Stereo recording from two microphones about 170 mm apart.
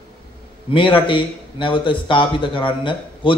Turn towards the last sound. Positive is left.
turn(degrees=30)  # may be behind; listen again after turning